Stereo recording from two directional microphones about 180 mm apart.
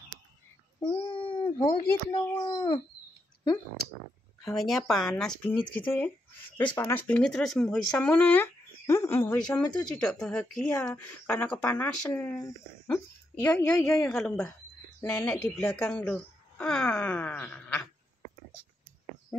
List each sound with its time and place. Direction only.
0.7 s babbling: 30° left (ahead or behind)
1.4 s cat: 15° left (ahead or behind)
2.1 s a child's voice: 25° left (ahead or behind)
4.6 s a woman's voice: centre (ahead or behind)
9.8 s a woman's voice: 5° left (ahead or behind)
15.0 s speech: 15° left (ahead or behind)